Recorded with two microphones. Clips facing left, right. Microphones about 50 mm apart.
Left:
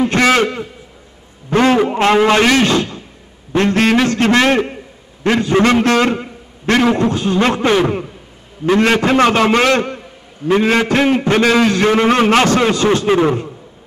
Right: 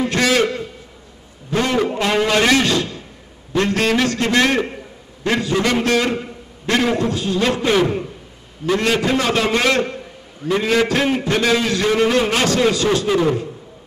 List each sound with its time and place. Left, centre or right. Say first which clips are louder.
0.0 s a man's voice: left 4 dB; left
11.4 s a man's voice: left 5 dB; left
11.7 s a man's voice: left 4 dB; left